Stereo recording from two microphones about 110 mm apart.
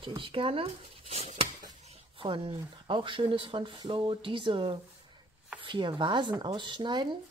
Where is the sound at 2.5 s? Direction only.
50° right (ahead or behind).